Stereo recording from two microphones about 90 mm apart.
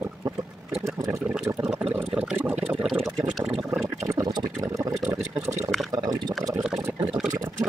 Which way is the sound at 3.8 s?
40° right (ahead or behind).